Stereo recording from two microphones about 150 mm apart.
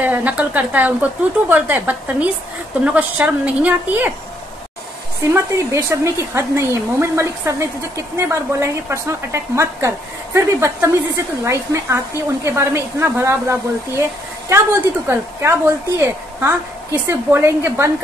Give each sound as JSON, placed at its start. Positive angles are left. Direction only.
{"t": 0.0, "sound": "a woman's voice", "side_deg": -10}
{"t": 5.3, "sound": "a woman's voice", "side_deg": -20}